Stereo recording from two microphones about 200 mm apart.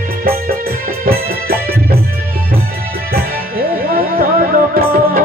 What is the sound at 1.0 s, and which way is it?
Music, 50° right (ahead or behind).